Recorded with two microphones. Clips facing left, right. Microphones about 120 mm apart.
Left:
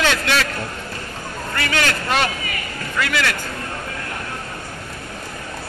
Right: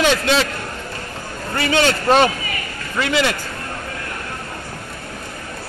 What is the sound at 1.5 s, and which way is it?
A man's voice, 25° right (ahead or behind).